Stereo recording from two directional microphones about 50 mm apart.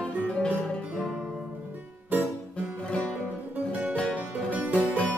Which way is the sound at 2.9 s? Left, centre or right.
Left.